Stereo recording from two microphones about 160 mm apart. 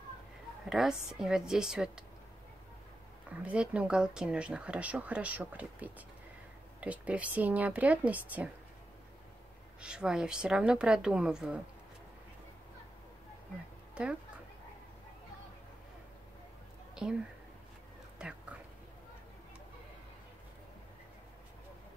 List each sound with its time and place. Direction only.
0.7 s a woman's voice: centre (ahead or behind)
3.4 s speech: 5° right (ahead or behind)
9.8 s a woman's voice: 5° right (ahead or behind)
16.9 s speech: 5° right (ahead or behind)